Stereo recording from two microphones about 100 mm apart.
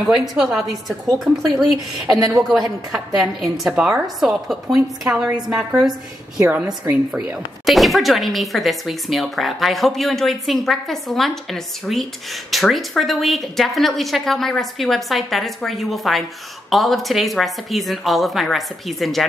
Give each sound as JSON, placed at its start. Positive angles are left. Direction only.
{"t": 0.0, "sound": "speech", "side_deg": -5}
{"t": 2.1, "sound": "a woman's voice", "side_deg": -35}
{"t": 2.4, "sound": "a woman's voice", "side_deg": 0}
{"t": 7.1, "sound": "speech", "side_deg": -5}